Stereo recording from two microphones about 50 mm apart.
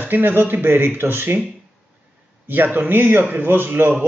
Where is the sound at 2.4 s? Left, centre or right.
Right.